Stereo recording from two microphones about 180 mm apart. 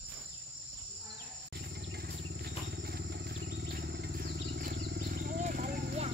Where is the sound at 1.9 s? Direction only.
60° right (ahead or behind).